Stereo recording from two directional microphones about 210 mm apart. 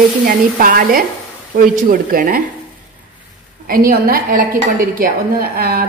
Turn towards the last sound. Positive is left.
turn(degrees=-45)  # may be behind; listen again after turning